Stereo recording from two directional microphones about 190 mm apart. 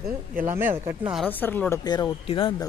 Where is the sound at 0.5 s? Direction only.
10° right (ahead or behind).